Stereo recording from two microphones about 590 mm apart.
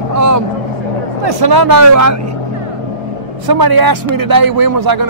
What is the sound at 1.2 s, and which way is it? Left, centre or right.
A man's voice, right.